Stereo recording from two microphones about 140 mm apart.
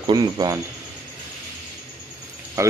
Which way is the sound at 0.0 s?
30° right (ahead or behind).